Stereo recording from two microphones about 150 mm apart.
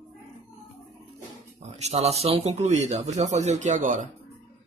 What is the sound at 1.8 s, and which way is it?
Speech, 45° right (ahead or behind).